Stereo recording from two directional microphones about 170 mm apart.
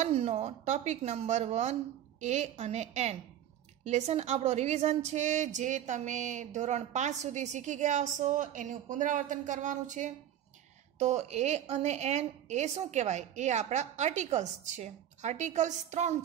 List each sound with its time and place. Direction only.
0.0 s a woman's voice: 35° right (ahead or behind)